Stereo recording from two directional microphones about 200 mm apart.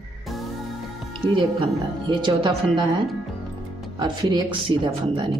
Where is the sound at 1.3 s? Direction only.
25° right (ahead or behind).